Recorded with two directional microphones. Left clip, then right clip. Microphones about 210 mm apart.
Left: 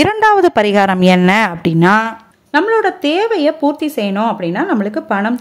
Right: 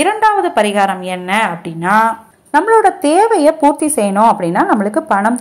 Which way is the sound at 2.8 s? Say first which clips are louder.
Right 4 dB; 25° left (ahead or behind).